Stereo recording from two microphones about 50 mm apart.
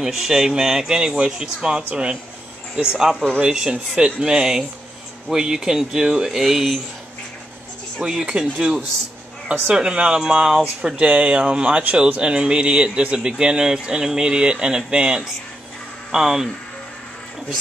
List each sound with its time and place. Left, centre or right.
0.0 s a man's voice: centre
8.0 s speech: centre
11.0 s a man's voice: right; by 16.4 s centre